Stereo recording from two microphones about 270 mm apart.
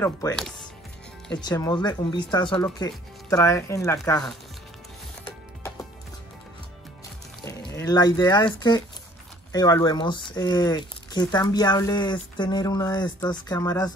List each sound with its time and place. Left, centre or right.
0.0 s speech: centre
1.4 s speech: centre
7.4 s a sound: centre
8.5 s speech: centre